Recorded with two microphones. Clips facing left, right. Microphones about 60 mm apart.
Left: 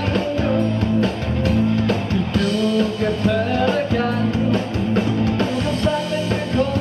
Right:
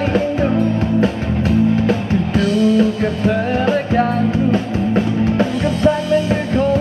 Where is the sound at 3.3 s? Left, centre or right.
Right.